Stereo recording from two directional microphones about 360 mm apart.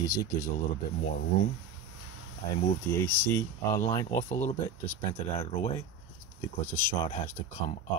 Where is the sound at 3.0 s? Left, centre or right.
Centre.